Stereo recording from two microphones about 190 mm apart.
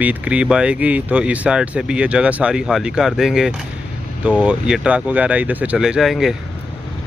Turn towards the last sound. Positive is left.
turn(degrees=0)  # may be behind; listen again after turning